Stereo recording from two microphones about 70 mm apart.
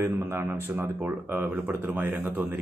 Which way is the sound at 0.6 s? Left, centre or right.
Right.